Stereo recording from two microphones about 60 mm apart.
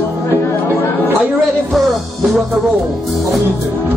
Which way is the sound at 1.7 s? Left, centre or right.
Centre.